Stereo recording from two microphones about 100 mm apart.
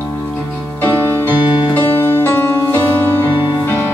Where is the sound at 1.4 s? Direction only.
45° left (ahead or behind).